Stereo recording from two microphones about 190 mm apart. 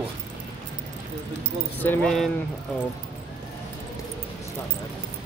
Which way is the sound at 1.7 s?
10° left (ahead or behind).